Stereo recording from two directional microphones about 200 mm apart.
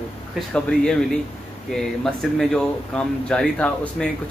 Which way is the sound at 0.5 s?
5° left (ahead or behind).